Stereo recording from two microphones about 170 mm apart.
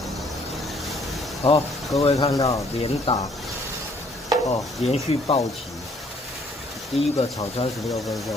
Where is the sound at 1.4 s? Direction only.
35° left (ahead or behind).